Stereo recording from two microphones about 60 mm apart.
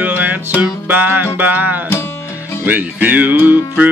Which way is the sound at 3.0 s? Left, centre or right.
Right.